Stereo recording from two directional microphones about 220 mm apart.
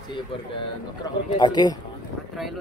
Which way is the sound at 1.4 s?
20° left (ahead or behind).